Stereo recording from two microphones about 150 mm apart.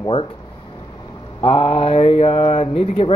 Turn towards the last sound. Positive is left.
turn(degrees=40)  # may be behind; listen again after turning